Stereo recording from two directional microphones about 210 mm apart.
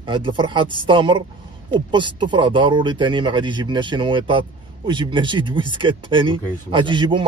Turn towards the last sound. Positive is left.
turn(degrees=-20)  # may be behind; listen again after turning